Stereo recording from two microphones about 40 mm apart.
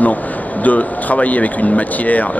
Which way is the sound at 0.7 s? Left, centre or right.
Left.